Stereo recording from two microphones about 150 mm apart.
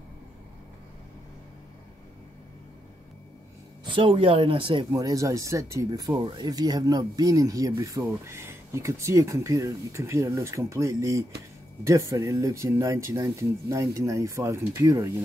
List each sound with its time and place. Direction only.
3.8 s speech: 35° right (ahead or behind); by 15.1 s 20° right (ahead or behind)